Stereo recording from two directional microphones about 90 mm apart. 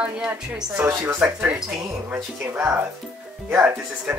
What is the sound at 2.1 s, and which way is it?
Speech, 20° right (ahead or behind).